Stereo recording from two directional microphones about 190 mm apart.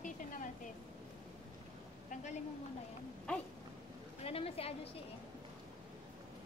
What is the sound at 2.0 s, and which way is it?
Speech, 40° left (ahead or behind).